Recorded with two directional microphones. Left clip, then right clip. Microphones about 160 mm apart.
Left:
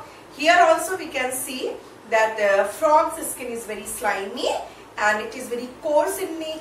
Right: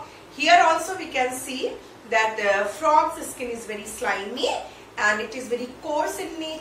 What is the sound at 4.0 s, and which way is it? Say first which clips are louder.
Speech: left 1 dB; 15° left (ahead or behind).